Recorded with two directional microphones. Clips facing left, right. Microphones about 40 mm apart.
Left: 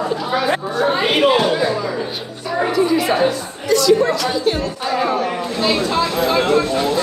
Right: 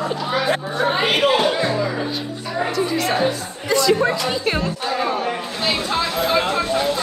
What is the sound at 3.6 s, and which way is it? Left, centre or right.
A woman's voice, right.